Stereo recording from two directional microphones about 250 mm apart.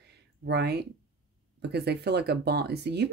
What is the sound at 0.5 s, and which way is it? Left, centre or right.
Speech, right.